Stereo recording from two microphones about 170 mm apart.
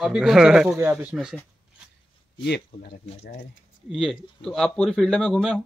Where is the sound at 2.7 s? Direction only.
60° left (ahead or behind).